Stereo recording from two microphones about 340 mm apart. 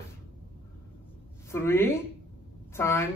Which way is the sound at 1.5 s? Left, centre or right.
Centre.